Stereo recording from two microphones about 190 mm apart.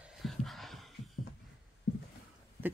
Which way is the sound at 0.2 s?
Centre (ahead or behind).